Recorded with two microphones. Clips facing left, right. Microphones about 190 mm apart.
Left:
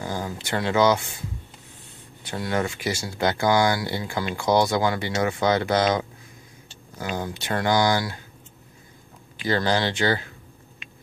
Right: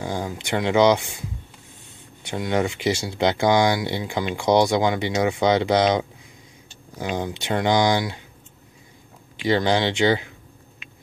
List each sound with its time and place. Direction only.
0.0 s speech: 15° right (ahead or behind)
2.2 s speech: 15° right (ahead or behind)
7.2 s speech: 20° right (ahead or behind)
9.5 s speech: 20° right (ahead or behind)
10.8 s a sound: 5° right (ahead or behind)